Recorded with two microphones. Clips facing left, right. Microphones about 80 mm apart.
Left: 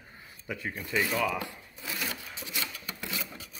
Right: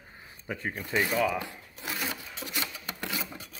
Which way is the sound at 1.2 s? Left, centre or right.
Centre.